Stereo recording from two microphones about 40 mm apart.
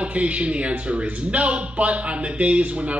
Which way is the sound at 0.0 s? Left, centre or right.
Right.